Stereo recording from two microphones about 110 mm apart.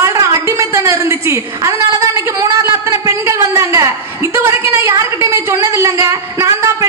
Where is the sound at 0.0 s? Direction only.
25° right (ahead or behind).